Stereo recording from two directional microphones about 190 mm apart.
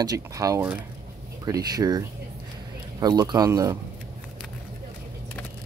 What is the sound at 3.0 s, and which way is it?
Speech, 20° right (ahead or behind).